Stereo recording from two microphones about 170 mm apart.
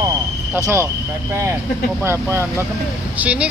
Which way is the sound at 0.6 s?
15° right (ahead or behind).